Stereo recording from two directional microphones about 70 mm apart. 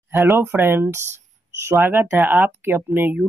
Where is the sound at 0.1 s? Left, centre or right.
Right.